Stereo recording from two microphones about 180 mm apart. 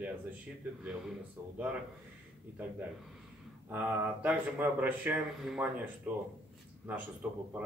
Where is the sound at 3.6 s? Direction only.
10° right (ahead or behind).